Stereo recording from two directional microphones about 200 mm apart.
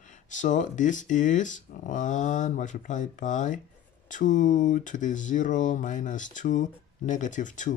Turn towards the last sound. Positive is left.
turn(degrees=40)  # may be behind; listen again after turning